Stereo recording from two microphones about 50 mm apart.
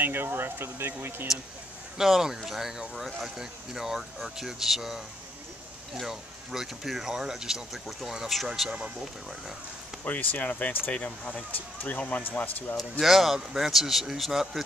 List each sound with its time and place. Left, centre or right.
0.0 s speech: right
2.0 s speech: centre
10.0 s speech: left
13.0 s speech: centre